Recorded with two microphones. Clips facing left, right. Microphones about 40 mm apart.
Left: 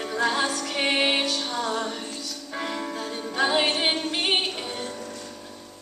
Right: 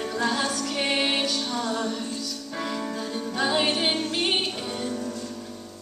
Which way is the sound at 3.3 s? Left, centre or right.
Centre.